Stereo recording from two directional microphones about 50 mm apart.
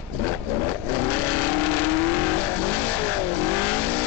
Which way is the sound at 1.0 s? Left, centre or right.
Left.